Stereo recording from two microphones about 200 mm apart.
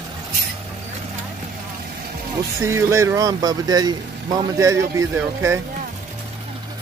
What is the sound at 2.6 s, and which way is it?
Speech, 15° right (ahead or behind).